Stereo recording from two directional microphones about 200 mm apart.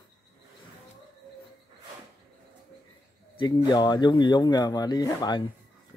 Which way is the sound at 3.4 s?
20° left (ahead or behind).